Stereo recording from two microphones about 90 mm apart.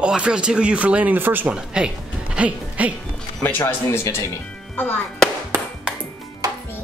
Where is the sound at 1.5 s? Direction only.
10° right (ahead or behind).